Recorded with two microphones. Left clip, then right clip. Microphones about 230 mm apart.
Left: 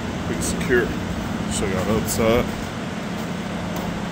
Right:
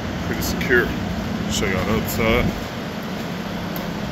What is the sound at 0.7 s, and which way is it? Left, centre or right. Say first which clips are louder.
Speech: right 2 dB; centre.